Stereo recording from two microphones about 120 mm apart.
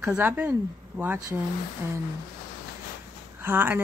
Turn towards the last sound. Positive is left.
turn(degrees=-15)  # may be behind; listen again after turning